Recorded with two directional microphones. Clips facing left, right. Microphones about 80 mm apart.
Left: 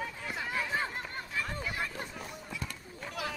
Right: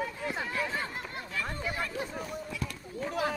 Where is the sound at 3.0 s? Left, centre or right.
Right.